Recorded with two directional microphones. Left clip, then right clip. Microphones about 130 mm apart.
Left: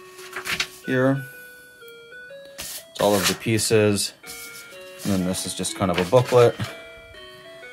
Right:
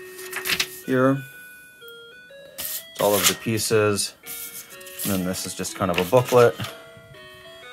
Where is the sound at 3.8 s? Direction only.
60° left (ahead or behind).